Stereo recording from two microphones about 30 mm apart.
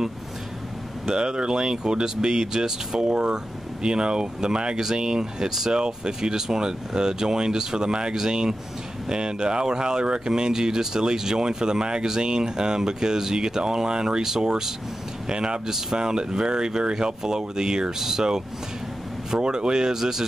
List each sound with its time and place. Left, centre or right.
1.0 s speech: right
3.0 s speech: right
8.1 s speech: centre
19.4 s speech: right